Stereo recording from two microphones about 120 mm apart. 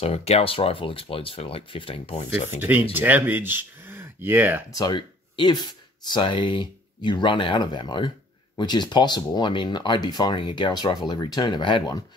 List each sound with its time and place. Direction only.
0.0 s speech: 55° left (ahead or behind)
2.1 s speech: 70° left (ahead or behind)
2.9 s speech: 15° right (ahead or behind)
4.7 s speech: 35° left (ahead or behind)